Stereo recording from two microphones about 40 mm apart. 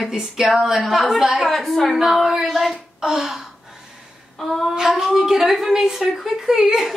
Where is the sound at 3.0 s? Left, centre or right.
Centre.